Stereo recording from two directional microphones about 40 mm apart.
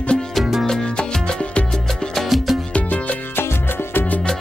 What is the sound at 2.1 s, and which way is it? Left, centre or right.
Music, centre.